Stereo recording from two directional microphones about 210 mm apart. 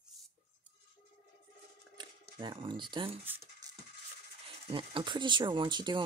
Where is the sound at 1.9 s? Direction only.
25° right (ahead or behind).